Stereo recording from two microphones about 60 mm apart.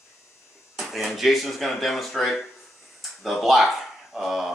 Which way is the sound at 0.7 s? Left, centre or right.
Centre.